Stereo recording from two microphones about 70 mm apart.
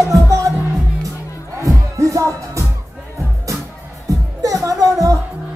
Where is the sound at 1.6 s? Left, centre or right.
Right.